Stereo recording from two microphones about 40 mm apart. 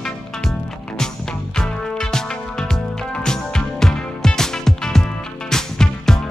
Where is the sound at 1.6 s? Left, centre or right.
Centre.